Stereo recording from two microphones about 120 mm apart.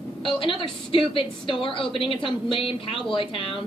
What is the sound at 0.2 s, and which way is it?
A woman's voice, 45° left (ahead or behind).